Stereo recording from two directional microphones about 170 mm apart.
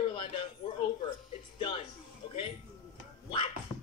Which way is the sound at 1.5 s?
35° left (ahead or behind).